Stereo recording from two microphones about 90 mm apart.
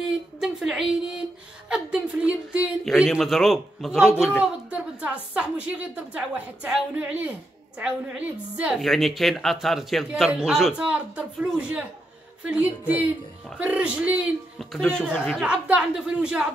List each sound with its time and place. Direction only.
0.0 s a woman's voice: 5° right (ahead or behind)
2.8 s a man's voice: centre (ahead or behind)
4.4 s a woman's voice: 15° right (ahead or behind)
8.8 s a man's voice: centre (ahead or behind)
10.8 s a woman's voice: 15° right (ahead or behind)
14.6 s speech: 5° left (ahead or behind)
15.4 s a woman's voice: 15° right (ahead or behind)